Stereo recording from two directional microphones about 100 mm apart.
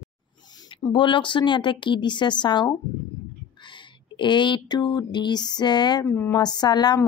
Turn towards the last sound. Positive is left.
turn(degrees=45)  # may be behind; listen again after turning